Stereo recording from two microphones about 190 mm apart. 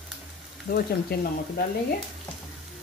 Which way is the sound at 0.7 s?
50° left (ahead or behind).